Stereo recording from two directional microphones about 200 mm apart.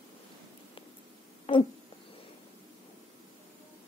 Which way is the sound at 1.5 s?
30° left (ahead or behind).